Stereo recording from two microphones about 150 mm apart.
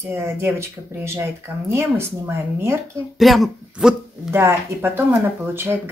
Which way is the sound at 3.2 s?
Centre (ahead or behind).